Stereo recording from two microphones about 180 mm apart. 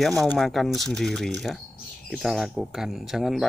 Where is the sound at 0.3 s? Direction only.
Centre (ahead or behind).